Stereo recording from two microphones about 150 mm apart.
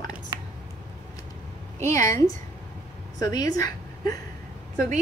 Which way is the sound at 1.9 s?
20° left (ahead or behind).